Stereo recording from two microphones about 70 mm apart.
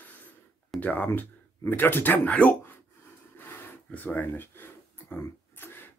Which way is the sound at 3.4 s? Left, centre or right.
Left.